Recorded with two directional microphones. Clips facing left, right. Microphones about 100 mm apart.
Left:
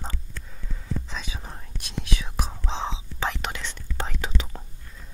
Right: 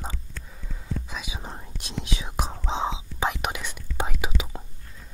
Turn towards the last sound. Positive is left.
turn(degrees=-10)  # may be behind; listen again after turning